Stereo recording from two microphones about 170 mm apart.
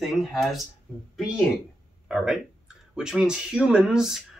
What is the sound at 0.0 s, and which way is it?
Speech, centre (ahead or behind).